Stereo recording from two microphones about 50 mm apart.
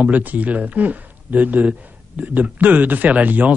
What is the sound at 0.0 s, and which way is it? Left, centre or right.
A man's voice, right.